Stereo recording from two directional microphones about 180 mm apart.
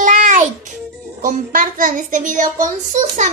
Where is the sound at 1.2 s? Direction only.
50° right (ahead or behind).